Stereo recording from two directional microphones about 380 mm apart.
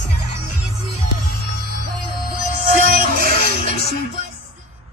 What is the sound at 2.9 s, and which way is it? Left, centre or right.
Music, right.